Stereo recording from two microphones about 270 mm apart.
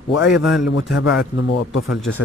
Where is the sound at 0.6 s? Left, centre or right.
Left.